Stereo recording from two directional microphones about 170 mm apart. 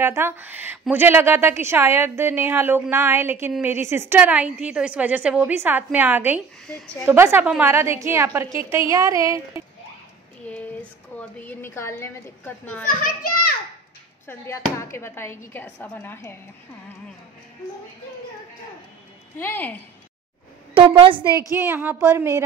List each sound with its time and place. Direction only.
0.0 s a woman's voice: 15° right (ahead or behind)
10.4 s speech: 10° left (ahead or behind)
12.8 s a child's voice: 55° left (ahead or behind)
14.2 s speech: 15° left (ahead or behind)
19.3 s speech: 10° left (ahead or behind)
20.7 s a woman's voice: 30° right (ahead or behind)
21.5 s a woman's voice: 10° right (ahead or behind)